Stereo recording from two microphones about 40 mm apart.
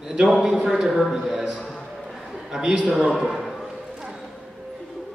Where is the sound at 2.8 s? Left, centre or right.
Centre.